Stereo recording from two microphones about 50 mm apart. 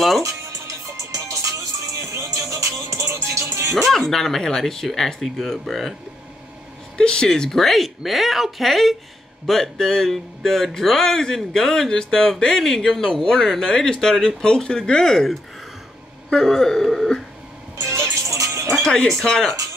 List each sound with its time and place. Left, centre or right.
0.2 s music: right
3.7 s speech: centre
7.0 s speech: centre
16.3 s speech: centre
17.7 s music: right
18.3 s music: right
18.8 s speech: centre